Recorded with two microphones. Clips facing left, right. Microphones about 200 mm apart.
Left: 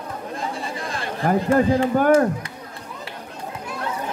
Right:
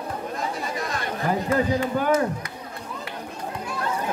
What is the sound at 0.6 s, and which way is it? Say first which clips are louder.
Chatter: even; 30° left (ahead or behind).